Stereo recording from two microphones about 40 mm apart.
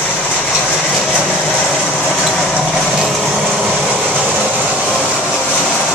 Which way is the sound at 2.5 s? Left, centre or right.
Centre.